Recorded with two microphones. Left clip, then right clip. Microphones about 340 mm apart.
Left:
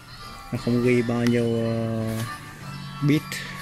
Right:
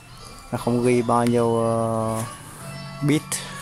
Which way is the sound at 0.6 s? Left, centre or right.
Right.